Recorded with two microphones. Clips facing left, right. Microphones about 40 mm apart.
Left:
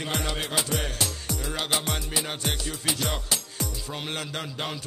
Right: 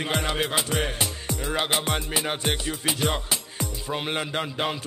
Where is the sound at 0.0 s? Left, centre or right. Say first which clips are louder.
Right 4 dB; right.